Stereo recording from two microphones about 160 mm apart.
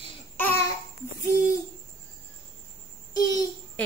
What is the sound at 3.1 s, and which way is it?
Speech, 25° left (ahead or behind).